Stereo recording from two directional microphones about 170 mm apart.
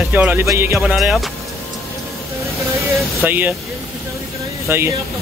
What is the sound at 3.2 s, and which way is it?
Speech, 10° right (ahead or behind).